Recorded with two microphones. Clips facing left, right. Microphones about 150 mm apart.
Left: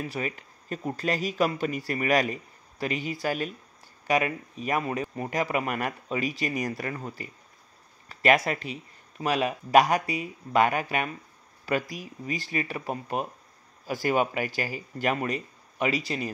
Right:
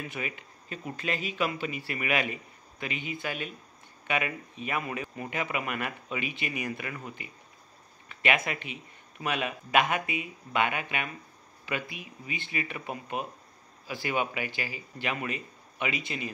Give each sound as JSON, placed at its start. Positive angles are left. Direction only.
{"t": 0.0, "sound": "speech", "side_deg": 35}